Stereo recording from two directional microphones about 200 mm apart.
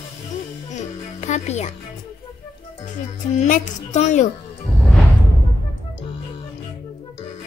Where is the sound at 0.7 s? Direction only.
35° left (ahead or behind).